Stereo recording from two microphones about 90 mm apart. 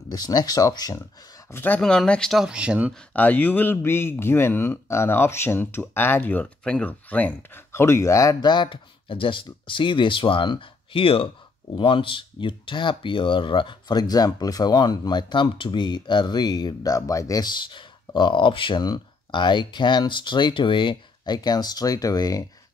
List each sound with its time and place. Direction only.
0.3 s speech: 45° left (ahead or behind)
1.5 s speech: 20° left (ahead or behind)
1.8 s speech: 10° left (ahead or behind)
2.4 s speech: 10° right (ahead or behind)
3.1 s speech: 20° left (ahead or behind)
7.7 s speech: 30° left (ahead or behind)
8.4 s speech: 55° left (ahead or behind); by 11.2 s 85° left
11.7 s speech: 75° left (ahead or behind); by 17.5 s 40° left (ahead or behind)
17.5 s speech: 60° left (ahead or behind); by 22.4 s 40° left (ahead or behind)